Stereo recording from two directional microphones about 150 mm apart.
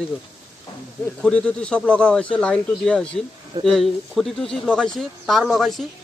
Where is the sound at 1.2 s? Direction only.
10° left (ahead or behind).